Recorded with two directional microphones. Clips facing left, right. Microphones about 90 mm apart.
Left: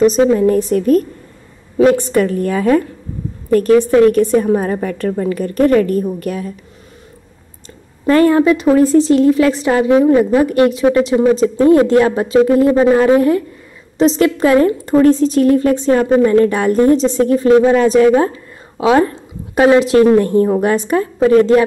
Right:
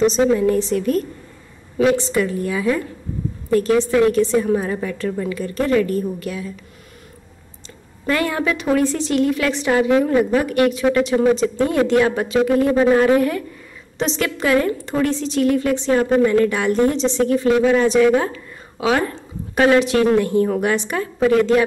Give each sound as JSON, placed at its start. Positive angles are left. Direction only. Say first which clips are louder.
{"t": 0.0, "sound": "a woman's voice", "louder": "left 5 dB", "side_deg": 40}
{"t": 8.1, "sound": "a woman's voice", "louder": "left 10 dB", "side_deg": 35}
{"t": 14.9, "sound": "a woman's voice", "louder": "left 10 dB", "side_deg": 40}
{"t": 19.9, "sound": "a woman's voice", "louder": "left 6 dB", "side_deg": 35}
{"t": 20.4, "sound": "a woman's voice", "louder": "left 5 dB", "side_deg": 30}